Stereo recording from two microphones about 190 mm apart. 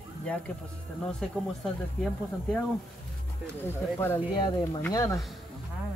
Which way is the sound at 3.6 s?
10° left (ahead or behind).